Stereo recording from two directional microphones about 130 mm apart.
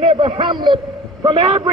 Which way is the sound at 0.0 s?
40° right (ahead or behind).